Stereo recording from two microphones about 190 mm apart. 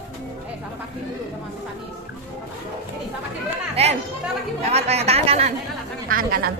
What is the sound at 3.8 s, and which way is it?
Chatter, 30° right (ahead or behind).